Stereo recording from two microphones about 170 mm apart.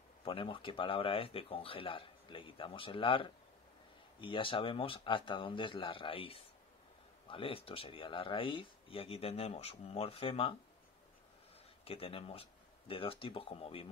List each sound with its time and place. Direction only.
0.2 s speech: 30° left (ahead or behind)
11.8 s speech: 35° left (ahead or behind)